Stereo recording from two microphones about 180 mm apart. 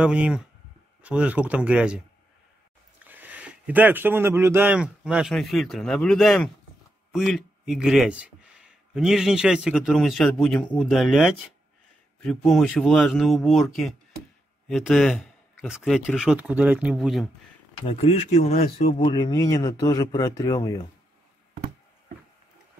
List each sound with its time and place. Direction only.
0.0 s a man's voice: 5° right (ahead or behind)
3.0 s a man's voice: 10° right (ahead or behind)
17.7 s speech: 30° left (ahead or behind)